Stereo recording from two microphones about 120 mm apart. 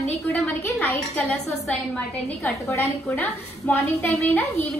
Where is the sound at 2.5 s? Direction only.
25° left (ahead or behind).